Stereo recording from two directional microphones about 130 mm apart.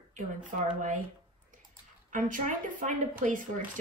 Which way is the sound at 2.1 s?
90° right.